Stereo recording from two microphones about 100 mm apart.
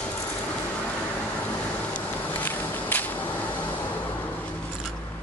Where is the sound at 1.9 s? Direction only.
15° left (ahead or behind).